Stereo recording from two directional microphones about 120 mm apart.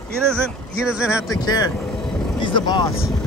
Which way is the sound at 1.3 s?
30° left (ahead or behind).